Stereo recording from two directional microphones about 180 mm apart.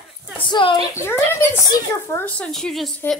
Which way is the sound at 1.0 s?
15° left (ahead or behind).